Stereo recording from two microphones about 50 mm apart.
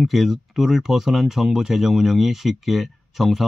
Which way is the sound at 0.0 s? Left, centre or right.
Centre.